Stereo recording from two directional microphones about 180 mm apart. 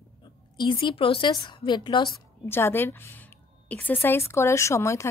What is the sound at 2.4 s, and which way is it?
Speech, 10° left (ahead or behind).